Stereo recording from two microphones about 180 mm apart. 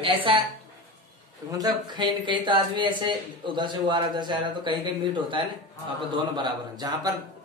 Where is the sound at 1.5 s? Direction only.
20° right (ahead or behind).